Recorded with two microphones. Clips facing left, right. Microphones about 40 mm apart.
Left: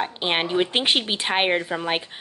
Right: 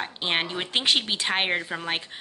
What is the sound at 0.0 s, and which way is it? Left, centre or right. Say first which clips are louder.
A woman's voice: left 3 dB; centre.